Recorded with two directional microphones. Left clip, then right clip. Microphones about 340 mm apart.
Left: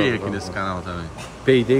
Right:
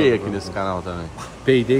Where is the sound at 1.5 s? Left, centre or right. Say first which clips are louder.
Even; centre.